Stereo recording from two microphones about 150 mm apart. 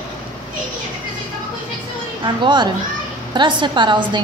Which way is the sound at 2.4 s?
30° right (ahead or behind).